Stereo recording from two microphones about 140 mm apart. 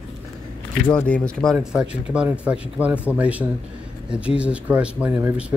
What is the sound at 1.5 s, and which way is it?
Speech, 5° right (ahead or behind).